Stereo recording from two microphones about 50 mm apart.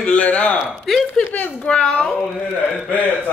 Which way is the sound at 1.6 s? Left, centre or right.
Left.